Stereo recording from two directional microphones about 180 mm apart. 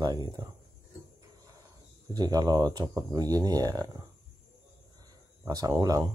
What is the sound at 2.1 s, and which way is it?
Speech, 20° right (ahead or behind).